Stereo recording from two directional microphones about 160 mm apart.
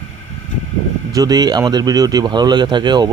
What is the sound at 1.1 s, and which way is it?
Speech, 25° right (ahead or behind).